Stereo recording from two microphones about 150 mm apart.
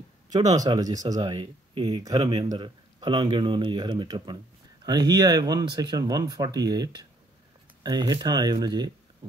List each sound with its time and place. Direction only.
0.3 s speech: 25° right (ahead or behind)